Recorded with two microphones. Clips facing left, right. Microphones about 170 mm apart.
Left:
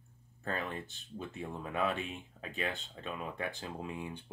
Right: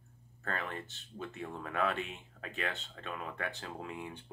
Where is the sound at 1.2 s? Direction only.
15° left (ahead or behind).